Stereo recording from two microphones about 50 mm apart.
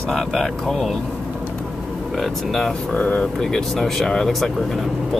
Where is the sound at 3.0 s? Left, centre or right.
Left.